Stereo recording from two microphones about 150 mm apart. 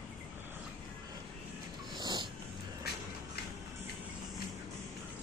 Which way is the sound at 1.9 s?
30° right (ahead or behind).